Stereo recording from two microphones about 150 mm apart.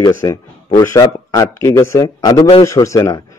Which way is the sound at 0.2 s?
25° left (ahead or behind).